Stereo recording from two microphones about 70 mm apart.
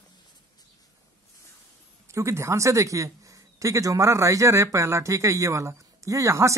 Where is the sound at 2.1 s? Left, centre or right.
Right.